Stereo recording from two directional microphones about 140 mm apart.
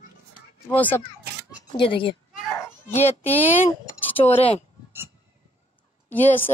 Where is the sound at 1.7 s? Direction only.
40° left (ahead or behind).